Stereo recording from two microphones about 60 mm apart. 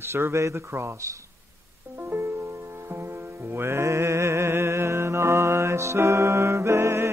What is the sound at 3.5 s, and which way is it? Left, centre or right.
Music, right.